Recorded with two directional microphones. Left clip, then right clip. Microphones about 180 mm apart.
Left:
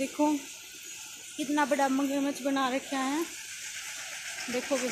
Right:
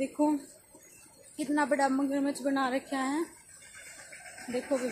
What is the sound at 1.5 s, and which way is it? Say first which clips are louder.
A woman's voice: left 1 dB; 15° left (ahead or behind).